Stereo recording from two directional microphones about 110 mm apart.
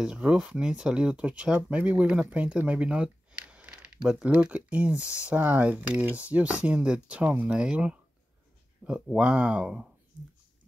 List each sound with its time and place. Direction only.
0.0 s speech: 10° right (ahead or behind)
5.0 s speech: 25° left (ahead or behind)
5.3 s speech: 15° right (ahead or behind)
9.1 s speech: 10° right (ahead or behind)